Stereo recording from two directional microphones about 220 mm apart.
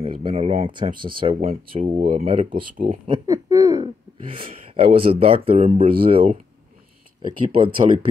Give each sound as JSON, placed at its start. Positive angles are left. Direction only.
{"t": 0.0, "sound": "speech", "side_deg": -25}